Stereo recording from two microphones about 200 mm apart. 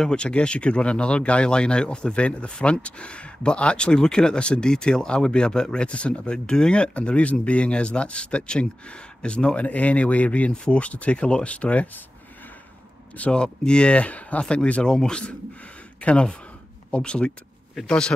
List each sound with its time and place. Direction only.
0.0 s speech: 5° left (ahead or behind)
13.1 s speech: 5° left (ahead or behind)